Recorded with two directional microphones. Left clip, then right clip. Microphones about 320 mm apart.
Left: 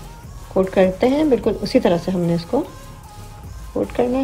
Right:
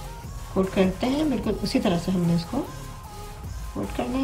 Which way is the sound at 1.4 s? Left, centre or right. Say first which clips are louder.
Left 8 dB; centre.